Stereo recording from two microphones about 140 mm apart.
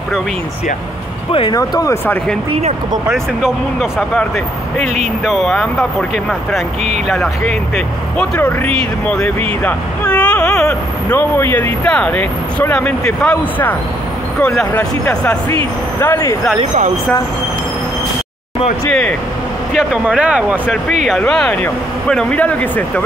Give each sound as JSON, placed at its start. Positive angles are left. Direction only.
{"t": 1.5, "sound": "speech", "side_deg": 25}
{"t": 3.1, "sound": "speech", "side_deg": -5}
{"t": 5.2, "sound": "speech", "side_deg": 0}
{"t": 18.9, "sound": "speech", "side_deg": 5}
{"t": 19.7, "sound": "speech", "side_deg": -5}
{"t": 21.2, "sound": "speech", "side_deg": 5}